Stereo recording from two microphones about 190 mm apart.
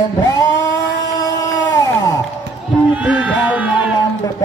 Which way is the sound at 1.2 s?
20° left (ahead or behind).